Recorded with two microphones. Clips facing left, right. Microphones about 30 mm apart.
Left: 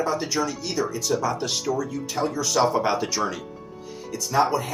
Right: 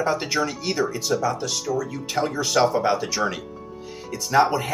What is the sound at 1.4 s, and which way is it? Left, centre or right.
Speech, centre.